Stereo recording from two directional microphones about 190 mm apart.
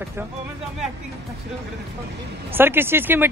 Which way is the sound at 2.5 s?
10° right (ahead or behind).